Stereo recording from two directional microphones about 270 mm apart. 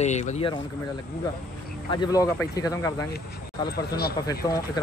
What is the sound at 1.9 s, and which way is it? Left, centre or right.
Speech, centre.